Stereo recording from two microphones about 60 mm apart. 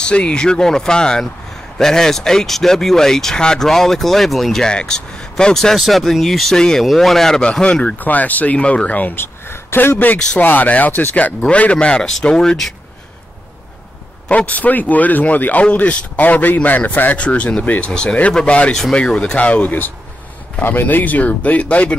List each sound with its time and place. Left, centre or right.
0.0 s speech: centre
7.6 s a man's voice: centre
9.1 s a man's voice: left; by 12.5 s centre
14.3 s a man's voice: left